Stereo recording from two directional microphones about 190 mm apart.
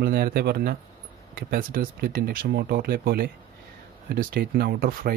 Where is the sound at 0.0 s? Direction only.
55° right (ahead or behind).